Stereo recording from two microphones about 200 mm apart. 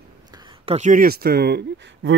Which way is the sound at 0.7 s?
40° right (ahead or behind).